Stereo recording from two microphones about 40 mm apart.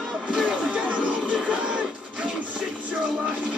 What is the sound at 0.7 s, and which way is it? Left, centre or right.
Music, right.